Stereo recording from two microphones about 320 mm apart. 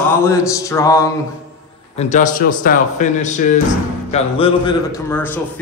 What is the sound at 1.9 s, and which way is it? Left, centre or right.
A man's voice, left.